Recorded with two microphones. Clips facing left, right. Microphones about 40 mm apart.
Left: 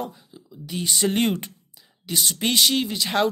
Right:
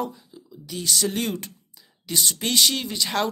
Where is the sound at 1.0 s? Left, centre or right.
Left.